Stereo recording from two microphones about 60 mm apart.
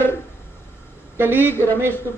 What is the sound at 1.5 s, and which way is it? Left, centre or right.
Speech, left.